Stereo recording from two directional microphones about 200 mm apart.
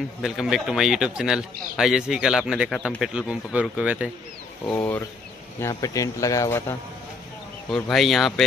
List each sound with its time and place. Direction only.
0.2 s speech: centre (ahead or behind)
4.6 s speech: 10° left (ahead or behind)
7.7 s speech: centre (ahead or behind)